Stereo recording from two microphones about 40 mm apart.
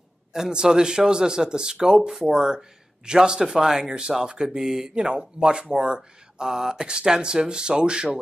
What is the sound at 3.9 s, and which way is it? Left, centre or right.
Speech, right.